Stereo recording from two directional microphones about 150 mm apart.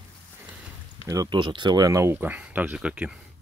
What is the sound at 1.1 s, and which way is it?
Speech, 25° right (ahead or behind).